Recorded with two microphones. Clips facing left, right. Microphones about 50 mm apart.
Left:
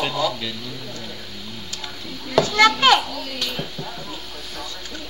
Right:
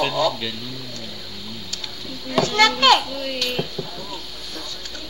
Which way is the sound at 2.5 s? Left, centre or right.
Left.